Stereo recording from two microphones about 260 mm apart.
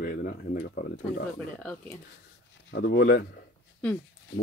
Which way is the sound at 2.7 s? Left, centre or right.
Left.